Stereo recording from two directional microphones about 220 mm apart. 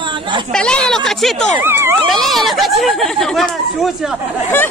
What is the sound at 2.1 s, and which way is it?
Speech, centre (ahead or behind).